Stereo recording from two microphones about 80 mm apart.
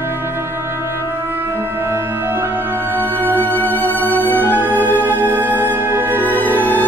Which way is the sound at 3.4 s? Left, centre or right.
Left.